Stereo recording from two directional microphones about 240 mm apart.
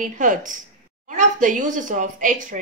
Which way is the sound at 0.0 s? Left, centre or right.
Right.